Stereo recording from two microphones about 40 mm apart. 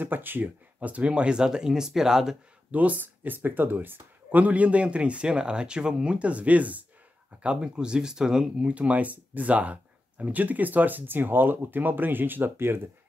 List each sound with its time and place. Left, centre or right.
0.0 s speech: right
0.7 s speech: right; by 2.3 s centre
2.7 s speech: right
4.4 s a man's voice: right
6.1 s speech: right
7.4 s a man's voice: right
8.5 s speech: right